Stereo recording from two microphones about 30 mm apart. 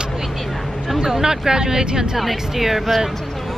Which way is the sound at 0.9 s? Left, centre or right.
Centre.